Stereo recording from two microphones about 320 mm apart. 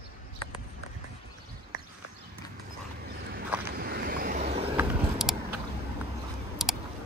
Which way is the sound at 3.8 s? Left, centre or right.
Right.